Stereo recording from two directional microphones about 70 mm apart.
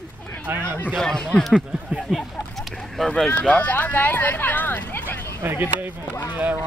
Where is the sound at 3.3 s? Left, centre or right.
Centre.